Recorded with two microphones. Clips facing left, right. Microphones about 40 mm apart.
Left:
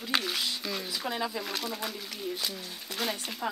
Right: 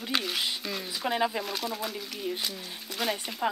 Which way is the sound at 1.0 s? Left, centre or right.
Centre.